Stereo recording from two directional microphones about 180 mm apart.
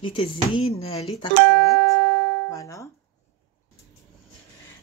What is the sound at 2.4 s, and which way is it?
Speech, 15° left (ahead or behind).